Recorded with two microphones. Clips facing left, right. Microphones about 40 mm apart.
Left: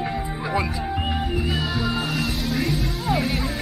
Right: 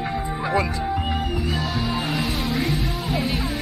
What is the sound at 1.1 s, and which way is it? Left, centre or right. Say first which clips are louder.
Music: even; centre.